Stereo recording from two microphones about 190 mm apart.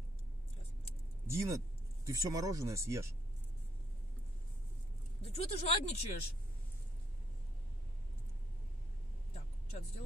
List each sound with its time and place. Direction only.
1.2 s speech: 15° right (ahead or behind)
5.2 s speech: 30° left (ahead or behind)
9.3 s vehicle: 35° left (ahead or behind)